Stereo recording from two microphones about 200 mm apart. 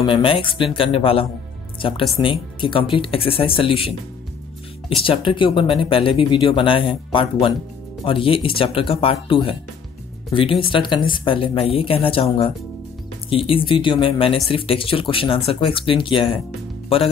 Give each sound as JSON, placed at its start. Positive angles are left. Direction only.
{"t": 0.0, "sound": "speech", "side_deg": 25}